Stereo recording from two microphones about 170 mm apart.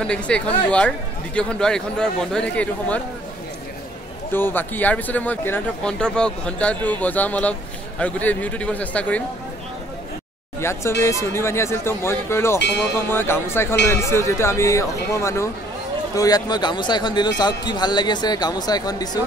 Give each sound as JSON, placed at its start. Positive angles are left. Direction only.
{"t": 0.0, "sound": "a woman's voice", "side_deg": 5}
{"t": 4.3, "sound": "speech", "side_deg": 10}
{"t": 10.6, "sound": "speech", "side_deg": 15}